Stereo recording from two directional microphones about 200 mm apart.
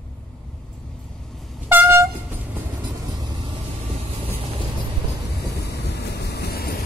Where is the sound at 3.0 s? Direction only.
20° right (ahead or behind).